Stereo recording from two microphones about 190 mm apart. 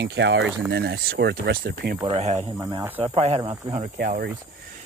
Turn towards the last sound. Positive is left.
turn(degrees=-50)  # may be behind; listen again after turning